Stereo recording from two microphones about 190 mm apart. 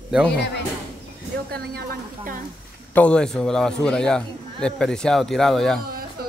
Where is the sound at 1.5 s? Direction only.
55° right (ahead or behind).